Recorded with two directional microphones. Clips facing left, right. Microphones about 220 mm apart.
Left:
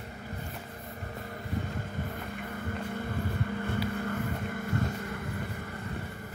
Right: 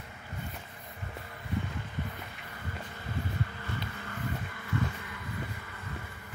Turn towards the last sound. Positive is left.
turn(degrees=50)  # may be behind; listen again after turning